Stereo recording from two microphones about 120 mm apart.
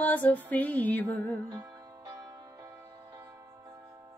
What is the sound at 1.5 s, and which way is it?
Music, 30° right (ahead or behind).